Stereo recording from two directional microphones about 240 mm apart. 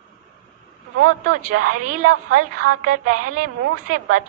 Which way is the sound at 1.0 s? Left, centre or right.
Right.